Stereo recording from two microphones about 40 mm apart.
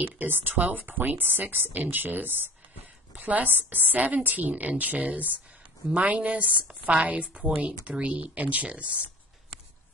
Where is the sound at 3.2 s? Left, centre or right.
Right.